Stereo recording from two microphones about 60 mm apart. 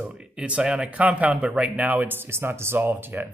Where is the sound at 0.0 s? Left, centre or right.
Right.